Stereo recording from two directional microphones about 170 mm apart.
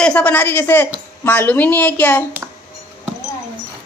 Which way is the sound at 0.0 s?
5° left (ahead or behind).